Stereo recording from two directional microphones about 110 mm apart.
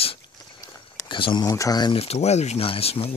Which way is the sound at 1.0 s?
45° left (ahead or behind).